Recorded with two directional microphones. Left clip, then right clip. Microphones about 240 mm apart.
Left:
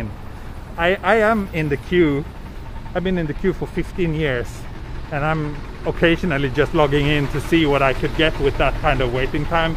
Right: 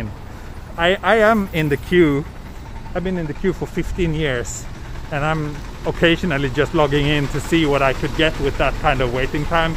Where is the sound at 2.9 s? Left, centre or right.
Centre.